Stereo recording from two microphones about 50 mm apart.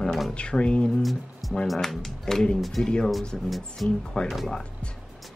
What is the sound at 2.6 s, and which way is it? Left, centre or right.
Speech, centre.